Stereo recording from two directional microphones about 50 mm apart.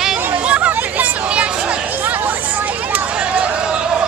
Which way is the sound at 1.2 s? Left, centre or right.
Right.